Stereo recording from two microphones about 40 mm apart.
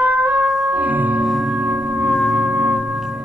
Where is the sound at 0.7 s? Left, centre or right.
Right.